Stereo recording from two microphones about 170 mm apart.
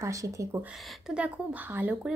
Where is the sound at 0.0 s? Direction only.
20° right (ahead or behind).